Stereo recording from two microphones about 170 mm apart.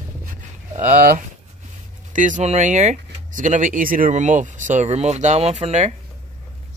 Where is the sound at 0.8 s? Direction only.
55° right (ahead or behind).